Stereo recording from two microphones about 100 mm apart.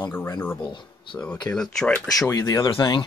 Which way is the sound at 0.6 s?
50° left (ahead or behind).